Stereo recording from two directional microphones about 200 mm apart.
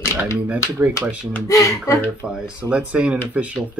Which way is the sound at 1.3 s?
15° left (ahead or behind).